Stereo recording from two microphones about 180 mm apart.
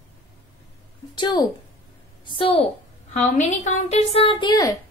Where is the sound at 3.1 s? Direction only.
40° left (ahead or behind); by 4.8 s 20° left (ahead or behind).